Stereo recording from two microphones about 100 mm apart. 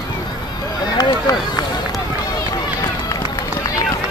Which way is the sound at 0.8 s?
40° left (ahead or behind).